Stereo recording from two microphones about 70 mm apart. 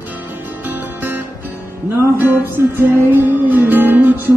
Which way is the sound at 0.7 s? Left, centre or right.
Right.